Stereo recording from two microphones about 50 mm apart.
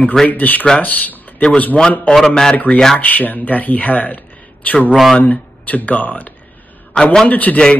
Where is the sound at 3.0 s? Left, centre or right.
Left.